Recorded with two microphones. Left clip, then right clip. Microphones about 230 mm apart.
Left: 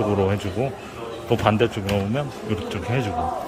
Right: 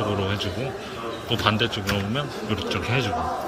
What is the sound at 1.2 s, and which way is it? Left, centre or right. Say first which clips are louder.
A man's voice: left 3 dB; centre.